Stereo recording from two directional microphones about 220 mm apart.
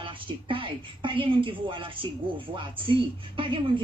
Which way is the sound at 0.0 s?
25° right (ahead or behind).